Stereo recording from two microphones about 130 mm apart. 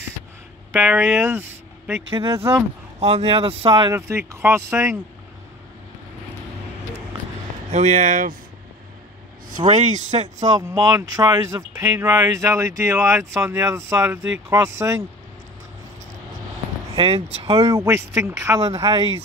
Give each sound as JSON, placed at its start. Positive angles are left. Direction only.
{"t": 0.7, "sound": "speech", "side_deg": -5}
{"t": 1.2, "sound": "speech", "side_deg": -15}
{"t": 3.0, "sound": "speech", "side_deg": -50}
{"t": 3.9, "sound": "speech", "side_deg": -20}
{"t": 7.7, "sound": "speech", "side_deg": -65}
{"t": 9.6, "sound": "speech", "side_deg": -45}
{"t": 10.2, "sound": "speech", "side_deg": -30}
{"t": 16.9, "sound": "speech", "side_deg": -45}
{"t": 17.6, "sound": "speech", "side_deg": -25}